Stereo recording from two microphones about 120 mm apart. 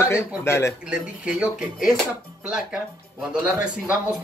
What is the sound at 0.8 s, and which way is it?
Speech, 10° right (ahead or behind).